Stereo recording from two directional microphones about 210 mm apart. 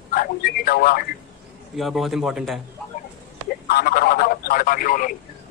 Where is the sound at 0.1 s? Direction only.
45° left (ahead or behind).